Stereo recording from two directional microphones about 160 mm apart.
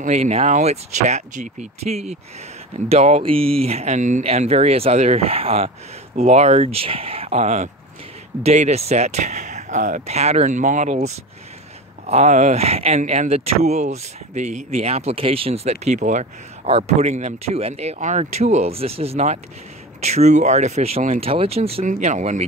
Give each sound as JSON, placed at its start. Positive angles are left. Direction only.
{"t": 0.0, "sound": "speech", "side_deg": -45}